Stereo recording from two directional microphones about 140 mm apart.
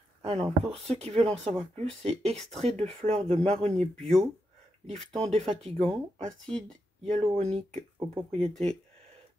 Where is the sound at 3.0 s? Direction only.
45° right (ahead or behind).